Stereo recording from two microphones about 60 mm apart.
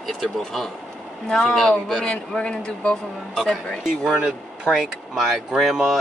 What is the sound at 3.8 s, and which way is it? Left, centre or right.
Speech, centre.